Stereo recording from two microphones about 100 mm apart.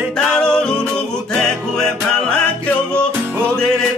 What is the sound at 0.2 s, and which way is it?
Music, 5° left (ahead or behind).